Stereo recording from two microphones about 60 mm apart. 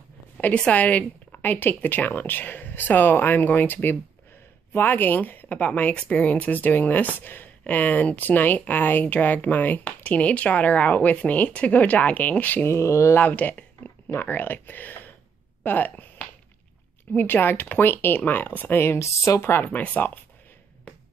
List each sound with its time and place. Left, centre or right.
0.6 s a woman's voice: left
12.6 s speech: left
13.1 s a woman's voice: left
19.6 s speech: left
20.9 s music: centre